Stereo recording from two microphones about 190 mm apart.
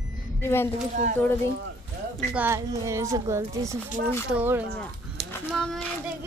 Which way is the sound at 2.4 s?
15° right (ahead or behind).